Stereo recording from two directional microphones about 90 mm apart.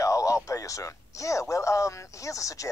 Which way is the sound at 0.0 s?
35° left (ahead or behind).